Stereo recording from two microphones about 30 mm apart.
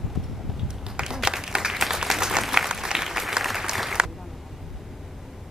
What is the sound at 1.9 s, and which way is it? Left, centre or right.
Applause, centre.